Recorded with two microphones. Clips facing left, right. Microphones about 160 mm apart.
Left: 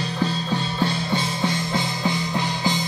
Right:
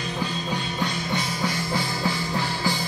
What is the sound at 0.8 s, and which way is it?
Music, 30° left (ahead or behind).